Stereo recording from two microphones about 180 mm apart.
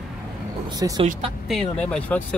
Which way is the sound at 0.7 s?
20° right (ahead or behind).